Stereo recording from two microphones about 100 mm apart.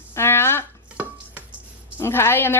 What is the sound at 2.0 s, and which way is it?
Speech, 25° left (ahead or behind).